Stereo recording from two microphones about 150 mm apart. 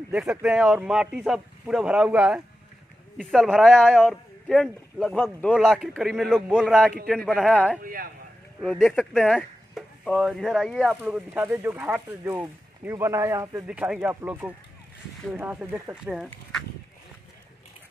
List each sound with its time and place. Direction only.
0.1 s speech: 5° right (ahead or behind)
7.8 s speech: 70° right (ahead or behind)
8.6 s a man's voice: centre (ahead or behind); by 13.7 s 20° right (ahead or behind)
13.7 s speech: 10° right (ahead or behind)